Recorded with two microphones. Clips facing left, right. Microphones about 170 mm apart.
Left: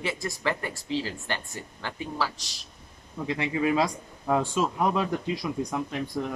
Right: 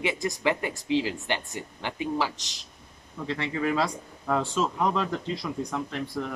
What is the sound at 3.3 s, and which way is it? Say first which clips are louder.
Speech: left 2 dB; 15° left (ahead or behind).